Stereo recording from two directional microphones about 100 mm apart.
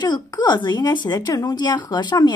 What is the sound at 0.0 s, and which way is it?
Speech, 45° left (ahead or behind).